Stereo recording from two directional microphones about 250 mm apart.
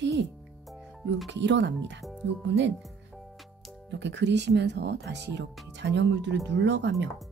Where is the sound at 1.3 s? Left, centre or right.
Right.